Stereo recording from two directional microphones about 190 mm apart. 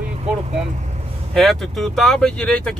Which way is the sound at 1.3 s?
Centre (ahead or behind).